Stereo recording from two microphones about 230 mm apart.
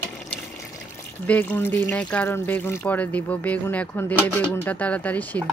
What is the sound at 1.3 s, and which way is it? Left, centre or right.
Speech, centre.